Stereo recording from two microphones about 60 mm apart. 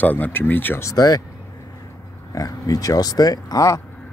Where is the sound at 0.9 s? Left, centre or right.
Left.